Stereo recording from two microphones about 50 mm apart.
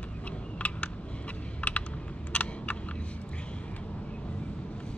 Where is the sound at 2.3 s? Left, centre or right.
Left.